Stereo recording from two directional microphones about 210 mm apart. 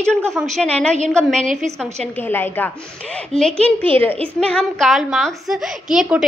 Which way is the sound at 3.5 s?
25° right (ahead or behind).